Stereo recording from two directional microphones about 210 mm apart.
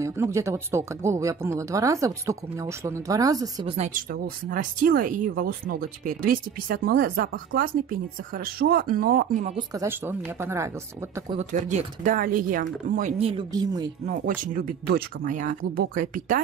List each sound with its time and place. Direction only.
0.0 s speech: 15° right (ahead or behind)
3.9 s speech: 40° right (ahead or behind)
9.6 s speech: 15° right (ahead or behind)
11.3 s speech: 35° right (ahead or behind)
13.3 s speech: 20° right (ahead or behind)
14.0 s speech: 40° right (ahead or behind)